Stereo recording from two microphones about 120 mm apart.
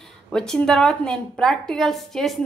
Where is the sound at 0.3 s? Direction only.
5° left (ahead or behind).